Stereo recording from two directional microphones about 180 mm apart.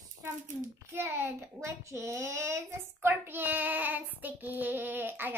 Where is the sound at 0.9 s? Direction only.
10° right (ahead or behind).